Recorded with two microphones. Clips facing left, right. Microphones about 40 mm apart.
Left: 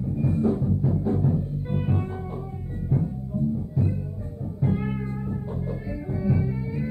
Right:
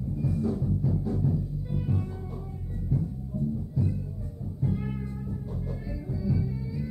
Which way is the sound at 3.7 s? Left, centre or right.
Left.